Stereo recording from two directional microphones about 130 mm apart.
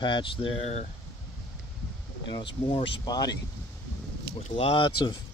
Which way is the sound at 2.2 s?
35° left (ahead or behind).